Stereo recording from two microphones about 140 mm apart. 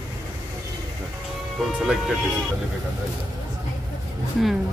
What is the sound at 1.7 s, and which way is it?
Speech, 5° right (ahead or behind).